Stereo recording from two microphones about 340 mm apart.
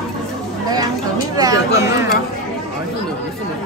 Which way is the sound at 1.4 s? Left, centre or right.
Centre.